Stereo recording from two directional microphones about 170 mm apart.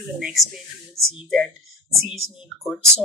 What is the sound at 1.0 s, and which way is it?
Speech, 15° right (ahead or behind).